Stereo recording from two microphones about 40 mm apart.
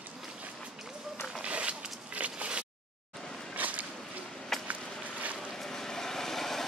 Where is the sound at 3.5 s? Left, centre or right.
Right.